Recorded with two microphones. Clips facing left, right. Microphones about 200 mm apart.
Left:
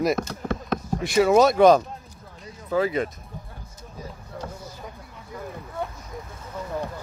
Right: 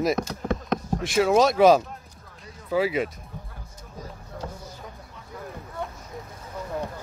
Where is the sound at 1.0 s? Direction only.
Centre (ahead or behind).